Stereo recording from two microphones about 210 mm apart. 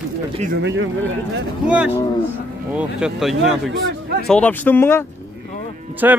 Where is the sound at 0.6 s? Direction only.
60° right (ahead or behind).